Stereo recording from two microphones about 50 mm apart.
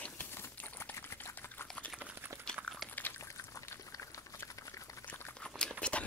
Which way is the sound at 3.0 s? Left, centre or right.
Left.